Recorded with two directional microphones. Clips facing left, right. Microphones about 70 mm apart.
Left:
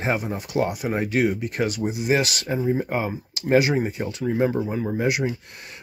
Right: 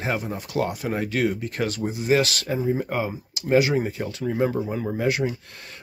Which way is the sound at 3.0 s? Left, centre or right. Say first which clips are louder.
Left 1 dB; left.